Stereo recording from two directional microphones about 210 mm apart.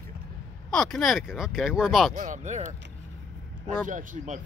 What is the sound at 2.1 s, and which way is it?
Speech, 35° right (ahead or behind).